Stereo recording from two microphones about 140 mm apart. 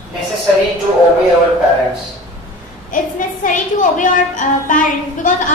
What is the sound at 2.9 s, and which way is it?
A woman's voice, 70° left (ahead or behind).